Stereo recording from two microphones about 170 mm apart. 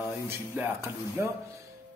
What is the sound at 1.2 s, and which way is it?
Speech, 15° right (ahead or behind).